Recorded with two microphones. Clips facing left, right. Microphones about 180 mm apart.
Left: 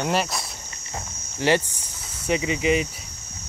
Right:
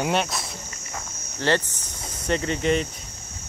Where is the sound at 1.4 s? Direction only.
10° left (ahead or behind).